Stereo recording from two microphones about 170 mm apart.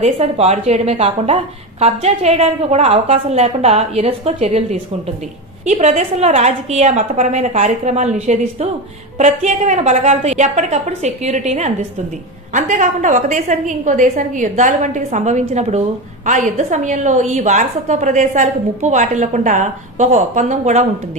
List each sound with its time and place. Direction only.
0.0 s a woman's voice: 40° right (ahead or behind)